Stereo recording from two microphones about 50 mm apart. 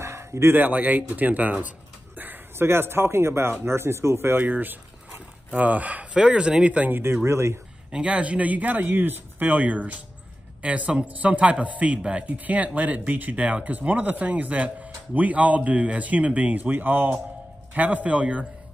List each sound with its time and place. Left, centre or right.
0.0 s a sound: right
0.6 s speech: right
2.6 s a man's voice: right
4.5 s speech: right
6.1 s a man's voice: centre
6.9 s speech: right
7.2 s a man's voice: right
7.9 s a man's voice: right
16.5 s speech: right
17.7 s a man's voice: right